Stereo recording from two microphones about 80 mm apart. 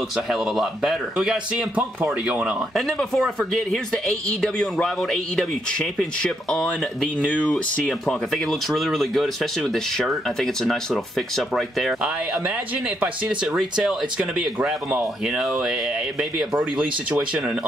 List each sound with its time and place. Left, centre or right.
0.1 s speech: centre
2.7 s speech: centre
12.0 s speech: centre